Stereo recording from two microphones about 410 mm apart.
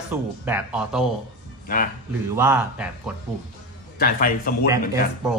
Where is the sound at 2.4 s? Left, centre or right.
Centre.